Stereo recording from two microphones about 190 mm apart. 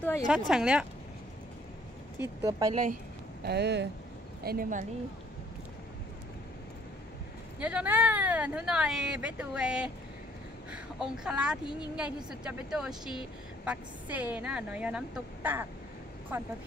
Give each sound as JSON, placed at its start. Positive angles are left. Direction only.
{"t": 0.0, "sound": "speech", "side_deg": 15}
{"t": 0.3, "sound": "speech", "side_deg": -5}
{"t": 2.2, "sound": "a woman's voice", "side_deg": -10}
{"t": 2.7, "sound": "a woman's voice", "side_deg": -45}
{"t": 3.4, "sound": "speech", "side_deg": -60}
{"t": 4.4, "sound": "a woman's voice", "side_deg": -50}
{"t": 7.6, "sound": "speech", "side_deg": -5}
{"t": 11.6, "sound": "speech", "side_deg": 20}
{"t": 12.3, "sound": "a woman's voice", "side_deg": -5}